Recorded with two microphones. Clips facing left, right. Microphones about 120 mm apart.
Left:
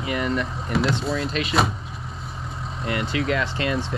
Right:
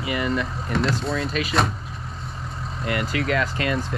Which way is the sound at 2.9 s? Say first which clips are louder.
Right 1 dB; 30° left (ahead or behind).